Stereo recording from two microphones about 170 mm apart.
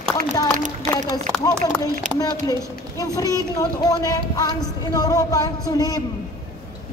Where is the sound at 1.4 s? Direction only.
20° left (ahead or behind).